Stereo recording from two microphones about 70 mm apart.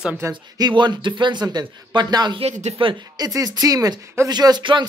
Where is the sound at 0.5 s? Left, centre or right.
Right.